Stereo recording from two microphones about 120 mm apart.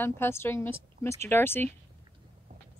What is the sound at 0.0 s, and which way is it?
A woman's voice, 20° left (ahead or behind).